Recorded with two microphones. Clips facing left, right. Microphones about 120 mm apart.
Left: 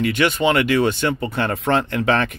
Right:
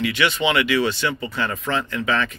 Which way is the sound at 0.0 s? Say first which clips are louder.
Left 3 dB; 50° left (ahead or behind).